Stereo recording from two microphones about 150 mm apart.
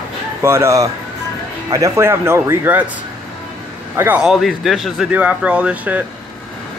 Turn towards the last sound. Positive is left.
turn(degrees=-10)  # may be behind; listen again after turning